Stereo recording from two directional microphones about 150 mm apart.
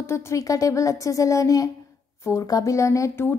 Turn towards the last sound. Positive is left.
turn(degrees=20)  # may be behind; listen again after turning